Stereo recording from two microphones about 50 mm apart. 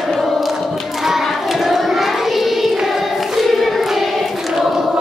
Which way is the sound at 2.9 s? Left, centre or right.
Centre.